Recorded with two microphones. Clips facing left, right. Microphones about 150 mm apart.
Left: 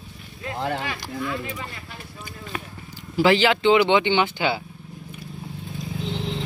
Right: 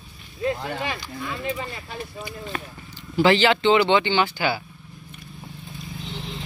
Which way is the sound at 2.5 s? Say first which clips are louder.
Even; 5° left (ahead or behind).